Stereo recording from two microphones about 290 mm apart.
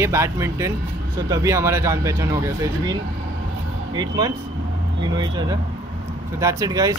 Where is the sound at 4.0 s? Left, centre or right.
Centre.